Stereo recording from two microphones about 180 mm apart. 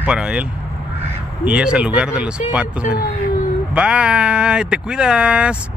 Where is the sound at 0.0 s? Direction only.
5° right (ahead or behind).